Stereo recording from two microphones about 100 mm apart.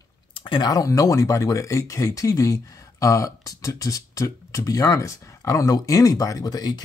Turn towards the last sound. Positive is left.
turn(degrees=40)  # may be behind; listen again after turning